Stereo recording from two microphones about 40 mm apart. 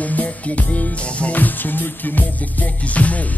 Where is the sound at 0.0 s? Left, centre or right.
Left.